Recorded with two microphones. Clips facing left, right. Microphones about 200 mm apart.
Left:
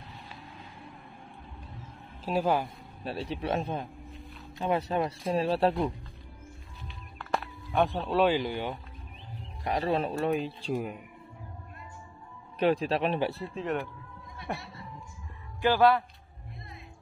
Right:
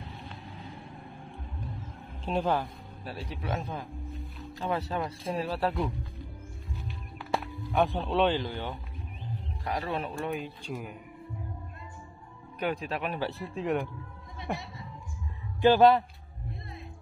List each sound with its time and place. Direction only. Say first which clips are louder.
2.2 s speech: left 1 dB; 5° left (ahead or behind)
3.0 s speech: left 5 dB; 25° left (ahead or behind)
4.6 s speech: left 3 dB; 20° left (ahead or behind)
6.9 s music: even; 10° right (ahead or behind)
7.8 s speech: left 1 dB; centre (ahead or behind)
9.8 s speech: left 8 dB; 35° left (ahead or behind)
12.5 s speech: left 6 dB; 30° left (ahead or behind)
13.6 s speech: right 3 dB; 10° right (ahead or behind)
15.6 s a man's voice: right 3 dB; 20° right (ahead or behind)